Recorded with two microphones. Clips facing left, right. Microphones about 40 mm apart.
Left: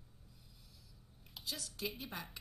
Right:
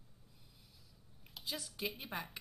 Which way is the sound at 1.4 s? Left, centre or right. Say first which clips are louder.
Right 1 dB; centre.